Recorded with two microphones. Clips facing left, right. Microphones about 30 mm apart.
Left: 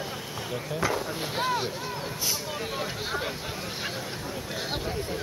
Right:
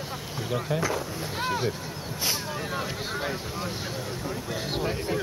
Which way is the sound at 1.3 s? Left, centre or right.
Centre.